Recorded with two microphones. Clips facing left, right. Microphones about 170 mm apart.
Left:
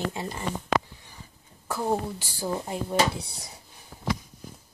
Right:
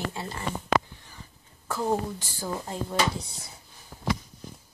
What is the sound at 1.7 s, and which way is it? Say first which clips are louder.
Speech: even; 10° left (ahead or behind).